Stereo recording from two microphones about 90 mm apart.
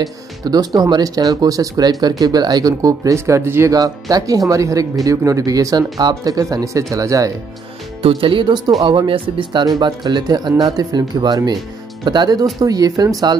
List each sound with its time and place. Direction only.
0.0 s speech: 45° right (ahead or behind); by 3.7 s 30° right (ahead or behind)
3.7 s speech: 45° right (ahead or behind)
8.0 s speech: 85° right; by 8.7 s 55° right (ahead or behind)
8.8 s speech: 70° right (ahead or behind); by 13.4 s 45° right (ahead or behind)